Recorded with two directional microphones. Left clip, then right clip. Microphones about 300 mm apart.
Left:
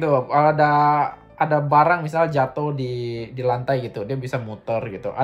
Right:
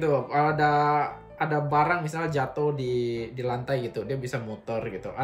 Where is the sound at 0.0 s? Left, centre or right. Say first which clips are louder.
Left 6 dB; centre.